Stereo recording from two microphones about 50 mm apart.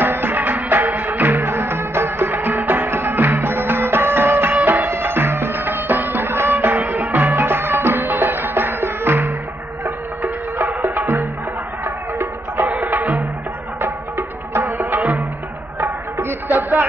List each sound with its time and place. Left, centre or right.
0.0 s music: right
9.8 s music: right
12.6 s music: right
13.7 s music: right
15.8 s music: right